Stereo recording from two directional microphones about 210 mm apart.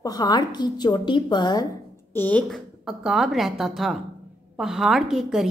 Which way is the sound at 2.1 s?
5° left (ahead or behind).